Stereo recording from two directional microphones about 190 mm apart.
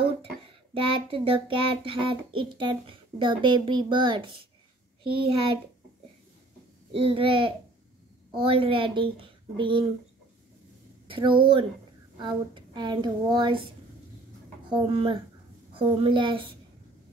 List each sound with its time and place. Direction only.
0.7 s a child's voice: 25° right (ahead or behind)
6.9 s a child's voice: 30° right (ahead or behind)
11.1 s a woman's voice: 25° right (ahead or behind)
14.7 s a child's voice: 30° right (ahead or behind)